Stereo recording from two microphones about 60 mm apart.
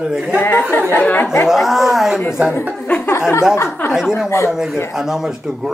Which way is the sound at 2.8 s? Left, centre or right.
Left.